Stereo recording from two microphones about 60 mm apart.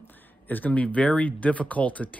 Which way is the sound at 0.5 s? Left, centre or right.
Left.